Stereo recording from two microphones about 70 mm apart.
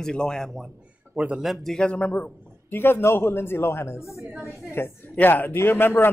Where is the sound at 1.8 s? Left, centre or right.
Centre.